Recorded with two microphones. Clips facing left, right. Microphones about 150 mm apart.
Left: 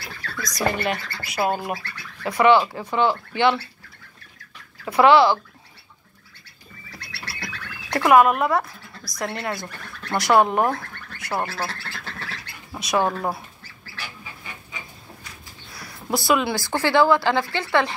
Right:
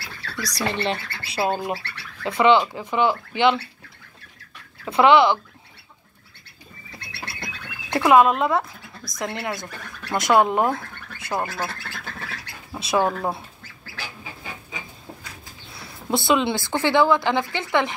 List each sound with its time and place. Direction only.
0.4 s a woman's voice: 35° right (ahead or behind); by 3.5 s 15° right (ahead or behind)
4.8 s a woman's voice: 25° right (ahead or behind)
6.9 s bird: 20° right (ahead or behind)
9.6 s speech: 20° right (ahead or behind)
12.7 s dog: 25° right (ahead or behind)
13.1 s speech: 10° left (ahead or behind)
15.7 s a sound: 25° right (ahead or behind)
16.8 s a woman's voice: 20° right (ahead or behind)